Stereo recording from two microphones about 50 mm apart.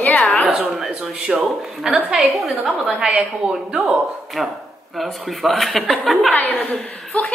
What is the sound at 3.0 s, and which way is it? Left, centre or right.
Speech, right.